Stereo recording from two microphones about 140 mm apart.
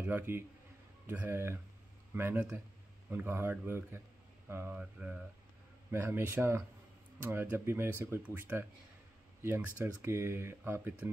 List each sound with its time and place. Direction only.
0.0 s a man's voice: 15° right (ahead or behind)